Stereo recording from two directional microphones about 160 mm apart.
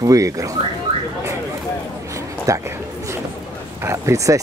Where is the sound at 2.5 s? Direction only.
20° right (ahead or behind).